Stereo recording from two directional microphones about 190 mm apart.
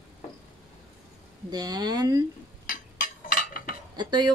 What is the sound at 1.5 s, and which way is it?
Speech, 20° right (ahead or behind).